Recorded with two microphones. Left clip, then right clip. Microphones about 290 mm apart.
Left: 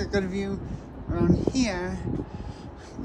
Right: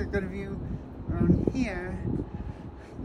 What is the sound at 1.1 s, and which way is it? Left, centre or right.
Speech, centre.